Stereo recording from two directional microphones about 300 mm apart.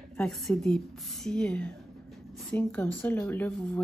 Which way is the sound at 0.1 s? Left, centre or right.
Centre.